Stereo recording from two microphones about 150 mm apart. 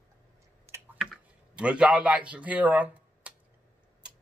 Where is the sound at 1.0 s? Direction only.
5° right (ahead or behind).